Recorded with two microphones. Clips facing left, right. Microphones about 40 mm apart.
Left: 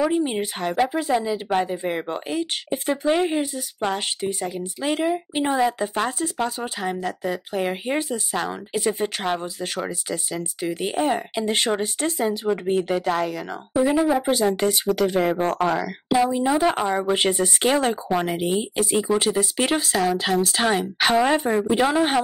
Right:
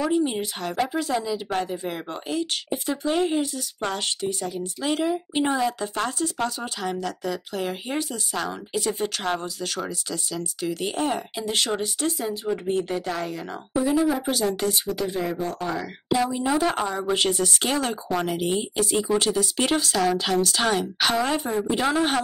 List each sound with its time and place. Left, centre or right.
0.1 s speech: left
10.8 s speech: centre
11.1 s speech: left
13.9 s speech: centre
14.6 s speech: left
15.0 s speech: left
16.3 s speech: centre
17.0 s speech: left
21.4 s speech: left
21.8 s speech: centre